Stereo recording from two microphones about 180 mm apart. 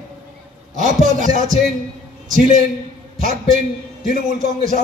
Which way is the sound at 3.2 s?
45° right (ahead or behind).